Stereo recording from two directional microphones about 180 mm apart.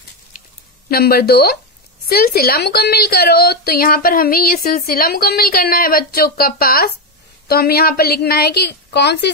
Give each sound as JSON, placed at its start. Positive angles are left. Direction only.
{"t": 0.8, "sound": "a woman's voice", "side_deg": 60}